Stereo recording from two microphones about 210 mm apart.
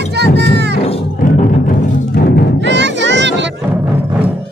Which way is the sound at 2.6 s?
55° right (ahead or behind).